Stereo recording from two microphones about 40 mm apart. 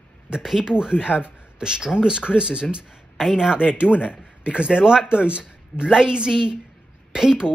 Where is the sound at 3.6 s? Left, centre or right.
Left.